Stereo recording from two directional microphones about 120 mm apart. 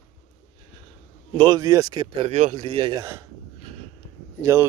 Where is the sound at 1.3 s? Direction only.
35° right (ahead or behind); by 2.4 s 50° right (ahead or behind).